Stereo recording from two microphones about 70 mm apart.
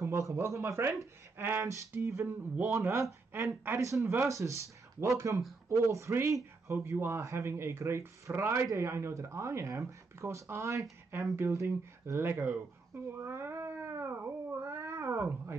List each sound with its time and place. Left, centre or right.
0.0 s speech: right
1.4 s a sound: right
1.7 s speech: right
13.2 s cat: right